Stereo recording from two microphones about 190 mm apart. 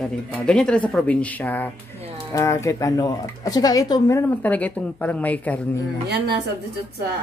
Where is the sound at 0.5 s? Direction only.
5° left (ahead or behind).